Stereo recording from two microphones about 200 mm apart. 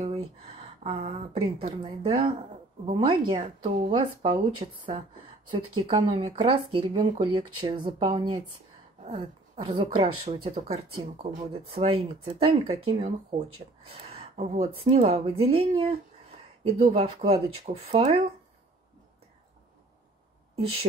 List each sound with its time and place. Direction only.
0.8 s speech: 30° right (ahead or behind)
14.1 s a sound: 35° right (ahead or behind)
14.9 s speech: 30° right (ahead or behind)